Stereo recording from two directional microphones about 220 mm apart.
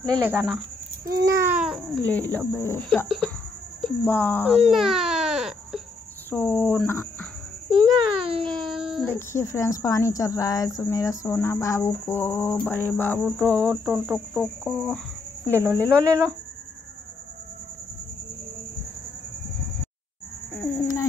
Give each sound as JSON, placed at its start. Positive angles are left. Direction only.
{"t": 0.2, "sound": "speech", "side_deg": -10}
{"t": 1.2, "sound": "babbling", "side_deg": -15}
{"t": 2.0, "sound": "speech", "side_deg": 5}
{"t": 4.6, "sound": "baby cry", "side_deg": 0}
{"t": 6.3, "sound": "speech", "side_deg": 10}
{"t": 7.7, "sound": "babbling", "side_deg": -25}
{"t": 8.5, "sound": "a sound", "side_deg": 0}
{"t": 9.0, "sound": "speech", "side_deg": 10}
{"t": 13.2, "sound": "cricket", "side_deg": 5}
{"t": 15.7, "sound": "speech", "side_deg": 5}
{"t": 16.1, "sound": "speech", "side_deg": -15}
{"t": 20.5, "sound": "a sound", "side_deg": 10}